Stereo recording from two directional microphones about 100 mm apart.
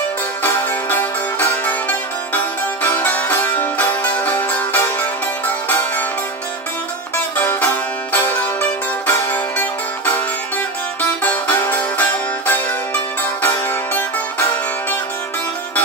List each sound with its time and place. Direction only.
0.4 s music: 20° left (ahead or behind)
7.3 s music: 20° left (ahead or behind)
11.2 s music: 20° left (ahead or behind)